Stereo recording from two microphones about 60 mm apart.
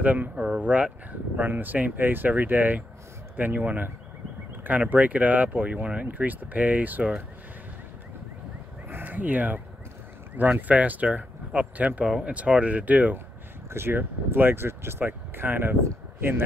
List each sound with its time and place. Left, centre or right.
0.0 s speech: right
8.8 s crow: right
10.3 s speech: right
13.7 s a man's voice: right